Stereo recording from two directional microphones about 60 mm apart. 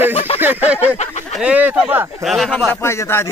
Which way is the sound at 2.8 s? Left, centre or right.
Left.